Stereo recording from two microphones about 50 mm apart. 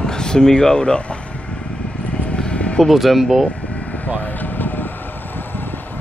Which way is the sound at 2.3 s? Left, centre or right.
Left.